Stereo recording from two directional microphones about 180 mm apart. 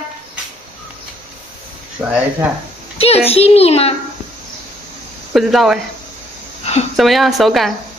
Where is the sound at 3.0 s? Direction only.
35° left (ahead or behind).